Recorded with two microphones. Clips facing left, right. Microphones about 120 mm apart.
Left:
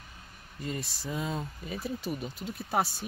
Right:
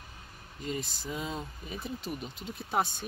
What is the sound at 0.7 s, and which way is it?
Speech, centre (ahead or behind).